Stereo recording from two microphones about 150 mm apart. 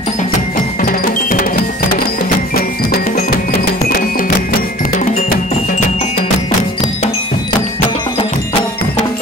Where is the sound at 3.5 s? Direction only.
85° left.